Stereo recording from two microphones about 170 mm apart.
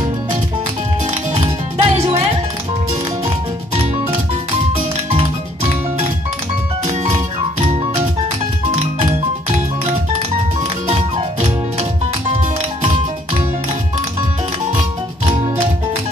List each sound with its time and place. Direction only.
1.3 s music: 35° right (ahead or behind)
6.9 s music: 45° right (ahead or behind)
10.9 s music: 35° right (ahead or behind)